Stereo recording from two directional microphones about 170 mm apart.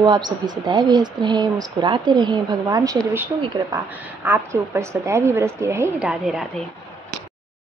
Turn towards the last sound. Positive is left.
turn(degrees=-5)  # may be behind; listen again after turning